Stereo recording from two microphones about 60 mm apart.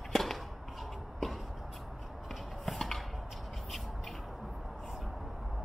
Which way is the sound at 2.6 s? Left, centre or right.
Centre.